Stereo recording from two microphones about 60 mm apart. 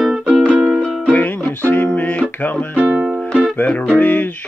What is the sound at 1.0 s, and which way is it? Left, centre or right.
Music, left.